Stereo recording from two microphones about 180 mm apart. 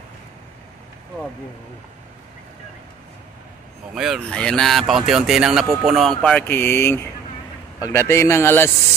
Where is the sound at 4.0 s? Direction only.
5° right (ahead or behind); by 8.7 s 15° left (ahead or behind).